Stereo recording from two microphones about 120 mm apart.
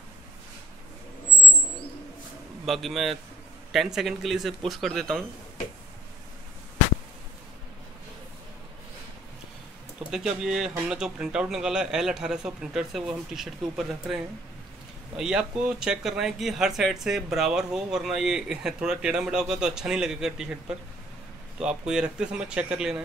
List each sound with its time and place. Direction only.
2.6 s speech: centre (ahead or behind)
10.1 s speech: 5° right (ahead or behind)